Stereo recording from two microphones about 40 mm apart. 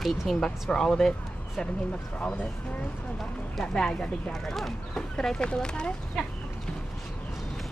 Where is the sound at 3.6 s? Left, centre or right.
Left.